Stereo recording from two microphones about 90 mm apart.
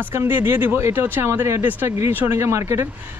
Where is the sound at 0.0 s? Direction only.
25° right (ahead or behind).